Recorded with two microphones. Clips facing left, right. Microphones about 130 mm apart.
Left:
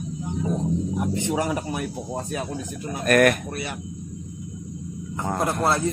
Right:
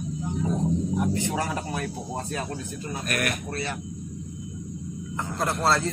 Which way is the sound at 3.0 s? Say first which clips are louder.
Left 13 dB; 50° left (ahead or behind).